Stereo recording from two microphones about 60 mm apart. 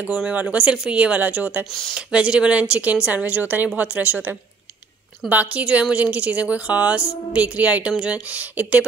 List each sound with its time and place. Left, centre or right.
0.0 s a woman's voice: centre
2.0 s a woman's voice: centre